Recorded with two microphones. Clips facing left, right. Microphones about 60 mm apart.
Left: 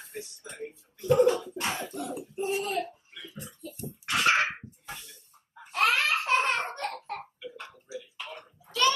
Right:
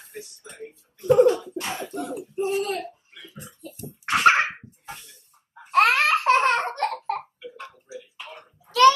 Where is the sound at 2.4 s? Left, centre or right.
Right.